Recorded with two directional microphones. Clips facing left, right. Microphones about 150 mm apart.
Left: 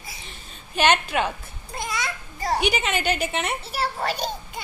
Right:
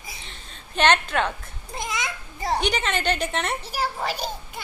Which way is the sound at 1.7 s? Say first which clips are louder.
Left 1 dB; 20° right (ahead or behind).